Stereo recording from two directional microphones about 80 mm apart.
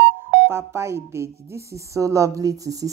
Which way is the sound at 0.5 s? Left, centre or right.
Right.